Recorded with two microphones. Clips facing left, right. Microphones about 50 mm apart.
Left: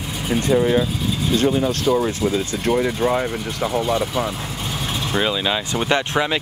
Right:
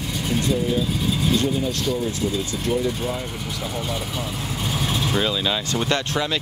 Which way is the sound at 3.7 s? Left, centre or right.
Centre.